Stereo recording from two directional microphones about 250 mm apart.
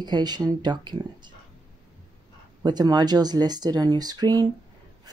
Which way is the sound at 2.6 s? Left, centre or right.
Centre.